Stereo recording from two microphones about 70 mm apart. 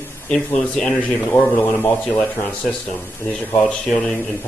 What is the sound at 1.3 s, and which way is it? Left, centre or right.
A man's voice, left.